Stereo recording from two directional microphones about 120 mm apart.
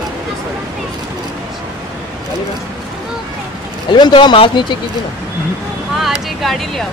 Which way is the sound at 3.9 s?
40° left (ahead or behind).